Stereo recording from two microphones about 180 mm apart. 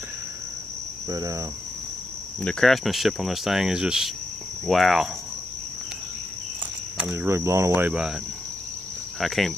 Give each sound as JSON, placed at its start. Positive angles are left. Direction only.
{"t": 1.0, "sound": "speech", "side_deg": -20}
{"t": 2.4, "sound": "speech", "side_deg": 0}
{"t": 7.0, "sound": "speech", "side_deg": -10}
{"t": 9.2, "sound": "speech", "side_deg": 0}